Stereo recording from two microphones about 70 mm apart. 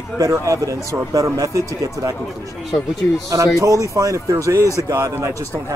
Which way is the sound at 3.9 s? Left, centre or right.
Right.